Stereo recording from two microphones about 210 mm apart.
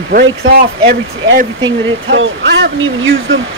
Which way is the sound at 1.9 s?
65° right (ahead or behind).